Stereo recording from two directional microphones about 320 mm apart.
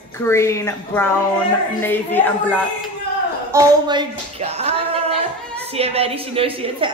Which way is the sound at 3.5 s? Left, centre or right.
Centre.